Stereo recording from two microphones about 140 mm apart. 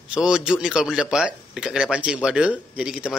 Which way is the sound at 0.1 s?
5° right (ahead or behind).